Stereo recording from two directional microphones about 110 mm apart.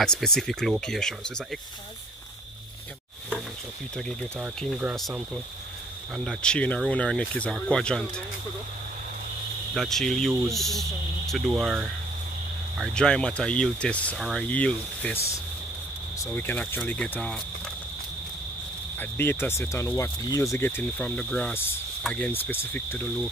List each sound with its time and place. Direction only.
0.0 s speech: 5° left (ahead or behind)
6.1 s speech: 5° left (ahead or behind)
9.8 s speech: 5° left (ahead or behind)
12.9 s speech: 5° left (ahead or behind)
14.1 s speech: centre (ahead or behind)
14.4 s speech: 10° left (ahead or behind)
16.3 s speech: 15° left (ahead or behind)
18.9 s speech: 20° left (ahead or behind)
21.2 s speech: 5° left (ahead or behind)